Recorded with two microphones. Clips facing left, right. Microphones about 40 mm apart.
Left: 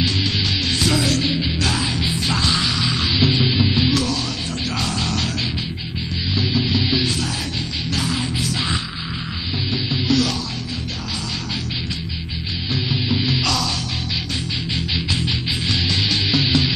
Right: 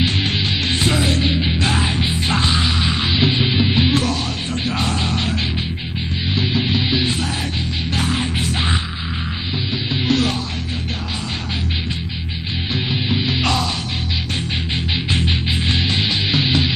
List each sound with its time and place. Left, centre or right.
0.0 s music: right
7.9 s music: right
10.0 s music: right
13.4 s music: right
15.0 s music: right